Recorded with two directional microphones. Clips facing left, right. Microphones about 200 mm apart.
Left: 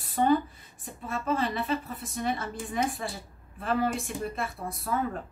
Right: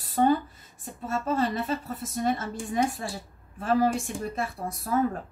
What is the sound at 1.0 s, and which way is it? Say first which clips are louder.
A woman's voice: right 2 dB; 40° right (ahead or behind).